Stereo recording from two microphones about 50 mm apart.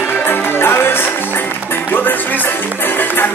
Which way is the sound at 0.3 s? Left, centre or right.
Left.